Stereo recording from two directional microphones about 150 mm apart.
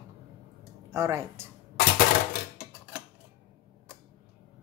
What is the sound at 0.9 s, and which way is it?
Speech, 20° right (ahead or behind).